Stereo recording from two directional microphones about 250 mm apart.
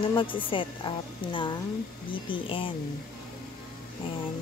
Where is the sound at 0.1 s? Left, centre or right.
Centre.